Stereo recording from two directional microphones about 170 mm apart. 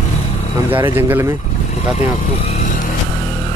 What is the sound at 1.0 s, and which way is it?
Speech, 15° right (ahead or behind).